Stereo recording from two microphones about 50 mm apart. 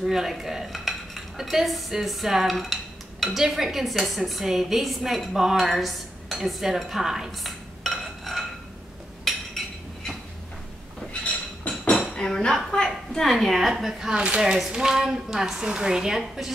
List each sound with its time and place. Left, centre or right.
0.0 s cutlery: centre
6.8 s a woman's voice: centre
7.2 s dishes: centre
9.3 s a sound: centre
11.1 s a sound: left
12.2 s a woman's voice: centre
14.0 s a woman's voice: centre